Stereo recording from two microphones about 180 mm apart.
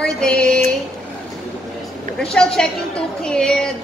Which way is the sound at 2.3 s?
5° left (ahead or behind).